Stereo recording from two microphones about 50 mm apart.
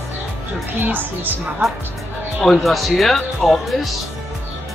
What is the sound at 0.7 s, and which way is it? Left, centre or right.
Speech, right.